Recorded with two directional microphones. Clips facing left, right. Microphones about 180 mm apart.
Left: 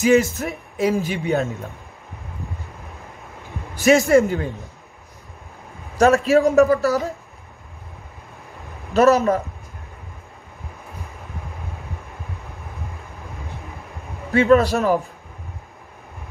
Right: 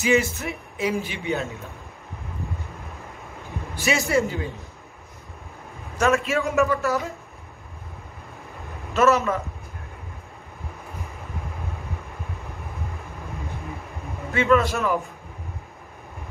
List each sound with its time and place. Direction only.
0.0 s a man's voice: 40° left (ahead or behind)
3.7 s speech: 45° left (ahead or behind)
5.9 s a man's voice: 35° left (ahead or behind)
8.9 s a man's voice: 40° left (ahead or behind)
14.3 s a man's voice: 35° left (ahead or behind)